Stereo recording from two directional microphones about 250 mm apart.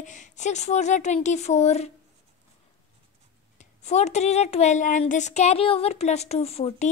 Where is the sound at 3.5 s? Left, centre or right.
Left.